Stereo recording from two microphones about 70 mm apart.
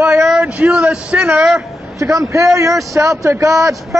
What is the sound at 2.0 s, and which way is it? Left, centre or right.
A man's voice, right.